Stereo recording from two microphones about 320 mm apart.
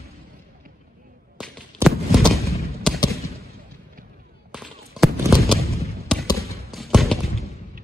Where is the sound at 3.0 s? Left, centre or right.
Centre.